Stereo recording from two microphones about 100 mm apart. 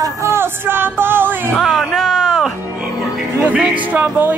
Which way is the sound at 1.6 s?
Centre (ahead or behind).